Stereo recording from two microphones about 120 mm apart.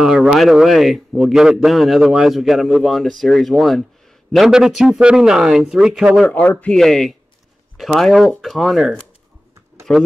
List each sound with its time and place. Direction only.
0.0 s a man's voice: 5° right (ahead or behind)
6.2 s a man's voice: 15° left (ahead or behind); by 8.9 s centre (ahead or behind)